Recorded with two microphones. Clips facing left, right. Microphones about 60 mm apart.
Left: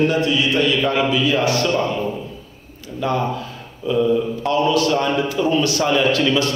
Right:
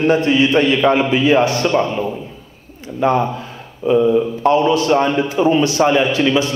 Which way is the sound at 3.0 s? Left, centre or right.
Right.